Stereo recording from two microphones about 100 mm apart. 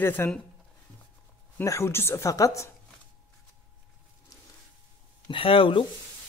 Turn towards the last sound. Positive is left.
turn(degrees=60)  # may be behind; listen again after turning